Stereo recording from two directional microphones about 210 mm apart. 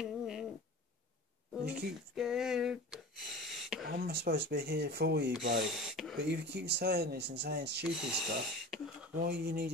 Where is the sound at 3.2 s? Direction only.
Centre (ahead or behind).